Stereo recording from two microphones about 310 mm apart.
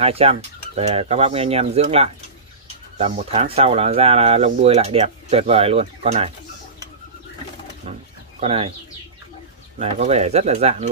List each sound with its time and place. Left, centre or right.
0.0 s speech: centre
7.8 s wild animals: centre
8.4 s speech: centre
9.8 s speech: right